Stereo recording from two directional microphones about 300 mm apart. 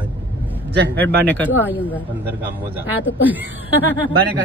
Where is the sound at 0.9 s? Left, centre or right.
Centre.